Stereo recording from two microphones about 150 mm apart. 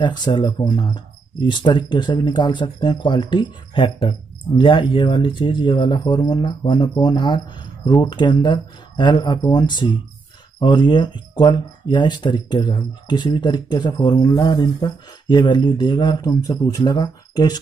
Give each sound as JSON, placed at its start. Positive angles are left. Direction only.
{"t": 0.0, "sound": "speech", "side_deg": 30}